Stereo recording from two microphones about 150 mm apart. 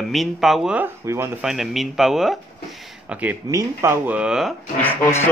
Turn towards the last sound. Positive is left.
turn(degrees=15)  # may be behind; listen again after turning